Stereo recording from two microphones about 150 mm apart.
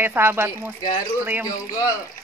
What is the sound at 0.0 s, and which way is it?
Speech, 15° right (ahead or behind).